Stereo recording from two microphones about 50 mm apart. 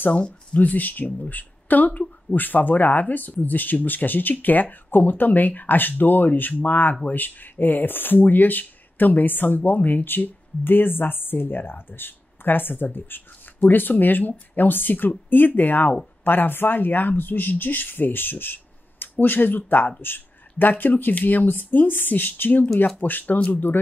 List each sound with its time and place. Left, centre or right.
0.1 s speech: left
0.6 s speech: left